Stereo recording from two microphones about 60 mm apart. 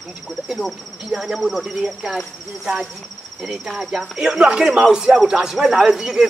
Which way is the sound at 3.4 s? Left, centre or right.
Centre.